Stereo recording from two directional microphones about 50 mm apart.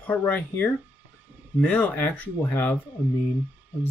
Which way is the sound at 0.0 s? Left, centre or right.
Left.